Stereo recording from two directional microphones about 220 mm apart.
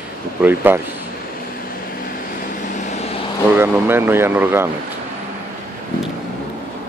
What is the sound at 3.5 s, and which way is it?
Speech, 10° right (ahead or behind).